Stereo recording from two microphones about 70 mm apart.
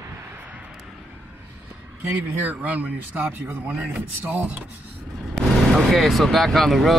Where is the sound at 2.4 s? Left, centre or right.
Right.